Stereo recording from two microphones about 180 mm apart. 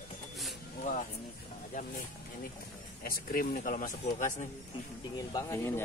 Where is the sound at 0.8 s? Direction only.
40° left (ahead or behind).